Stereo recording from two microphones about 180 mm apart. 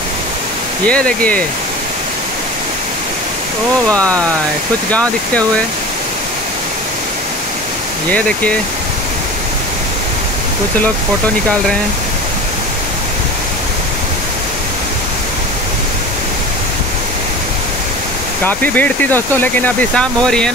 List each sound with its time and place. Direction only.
0.8 s speech: 5° left (ahead or behind)
3.9 s speech: 5° left (ahead or behind)
18.4 s speech: 10° left (ahead or behind)